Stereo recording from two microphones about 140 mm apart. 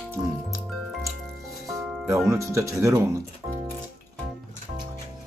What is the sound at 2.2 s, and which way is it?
Speech, 20° right (ahead or behind).